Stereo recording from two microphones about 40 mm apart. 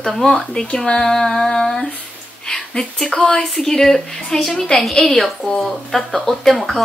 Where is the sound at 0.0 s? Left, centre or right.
Centre; by 3.4 s left.